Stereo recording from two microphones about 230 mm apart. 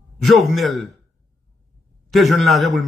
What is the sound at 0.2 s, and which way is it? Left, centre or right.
Speech, centre.